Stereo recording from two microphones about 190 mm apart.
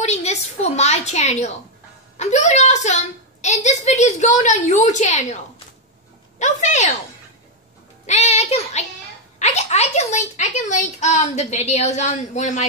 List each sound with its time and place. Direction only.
0.0 s a woman's voice: 35° left (ahead or behind)
6.4 s a woman's voice: 40° left (ahead or behind)
8.1 s a woman's voice: 35° left (ahead or behind)